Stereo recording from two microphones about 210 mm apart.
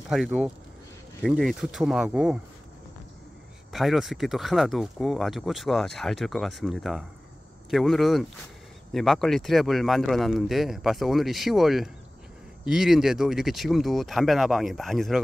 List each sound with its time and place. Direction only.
0.1 s speech: 5° right (ahead or behind)
3.7 s speech: centre (ahead or behind)